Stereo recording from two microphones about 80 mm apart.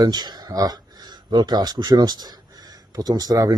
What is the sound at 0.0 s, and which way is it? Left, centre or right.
Speech, right.